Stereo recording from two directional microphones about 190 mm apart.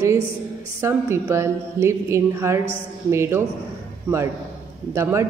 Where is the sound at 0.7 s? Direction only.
15° right (ahead or behind).